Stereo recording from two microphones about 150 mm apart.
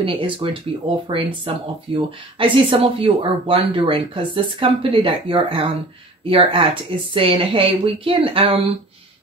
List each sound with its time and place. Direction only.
0.0 s speech: 35° right (ahead or behind)